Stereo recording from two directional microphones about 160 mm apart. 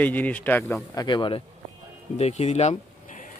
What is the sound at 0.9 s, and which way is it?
Speech, 25° left (ahead or behind).